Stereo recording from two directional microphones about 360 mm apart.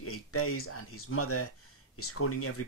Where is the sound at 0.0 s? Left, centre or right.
Left.